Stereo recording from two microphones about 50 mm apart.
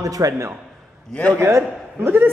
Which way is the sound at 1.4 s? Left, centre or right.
Right.